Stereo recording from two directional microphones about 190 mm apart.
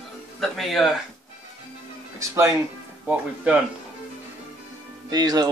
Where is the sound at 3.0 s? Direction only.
5° right (ahead or behind).